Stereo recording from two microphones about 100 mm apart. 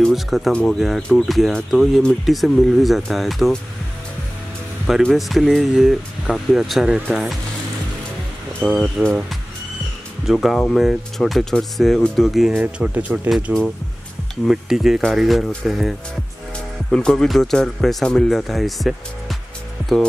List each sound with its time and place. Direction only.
0.0 s speech: centre (ahead or behind)
5.0 s speech: centre (ahead or behind)
8.5 s speech: 5° left (ahead or behind)
12.5 s speech: 15° right (ahead or behind)